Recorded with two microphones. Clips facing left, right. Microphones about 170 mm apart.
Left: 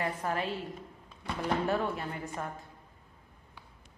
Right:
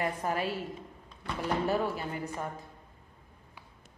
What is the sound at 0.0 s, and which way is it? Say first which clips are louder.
Speech: right 1 dB; 15° right (ahead or behind).